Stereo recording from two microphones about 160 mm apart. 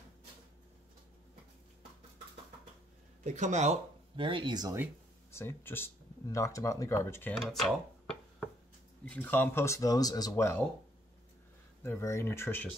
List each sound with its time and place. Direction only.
3.3 s speech: 50° right (ahead or behind)
4.2 s speech: 30° right (ahead or behind)
5.3 s speech: 15° left (ahead or behind)
7.3 s a sound: centre (ahead or behind)
9.1 s speech: 10° left (ahead or behind)
11.8 s speech: 15° left (ahead or behind)